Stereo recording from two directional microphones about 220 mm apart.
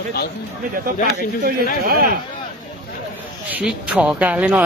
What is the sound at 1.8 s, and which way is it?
Speech, 40° right (ahead or behind).